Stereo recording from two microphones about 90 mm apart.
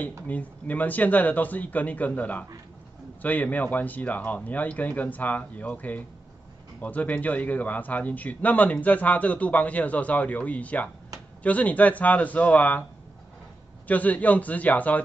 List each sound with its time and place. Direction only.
0.3 s speech: 15° left (ahead or behind)
13.8 s speech: 15° left (ahead or behind)